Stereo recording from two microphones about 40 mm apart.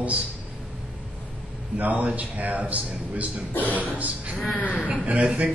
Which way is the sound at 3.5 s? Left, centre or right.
Left.